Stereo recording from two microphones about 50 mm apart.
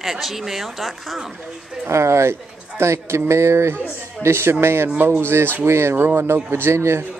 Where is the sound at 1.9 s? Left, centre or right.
Right.